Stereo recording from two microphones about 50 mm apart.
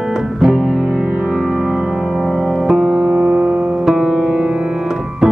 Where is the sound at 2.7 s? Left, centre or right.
Centre.